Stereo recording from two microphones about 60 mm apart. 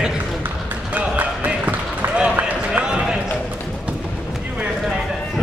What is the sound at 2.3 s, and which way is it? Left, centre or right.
Run, right.